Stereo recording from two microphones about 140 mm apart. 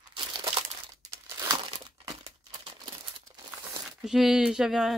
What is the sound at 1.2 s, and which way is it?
Crumpling, 25° right (ahead or behind).